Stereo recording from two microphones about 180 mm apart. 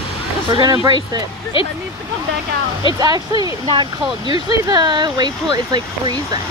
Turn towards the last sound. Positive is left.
turn(degrees=-25)  # may be behind; listen again after turning